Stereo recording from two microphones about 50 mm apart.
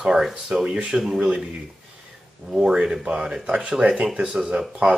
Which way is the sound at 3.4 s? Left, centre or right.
Right.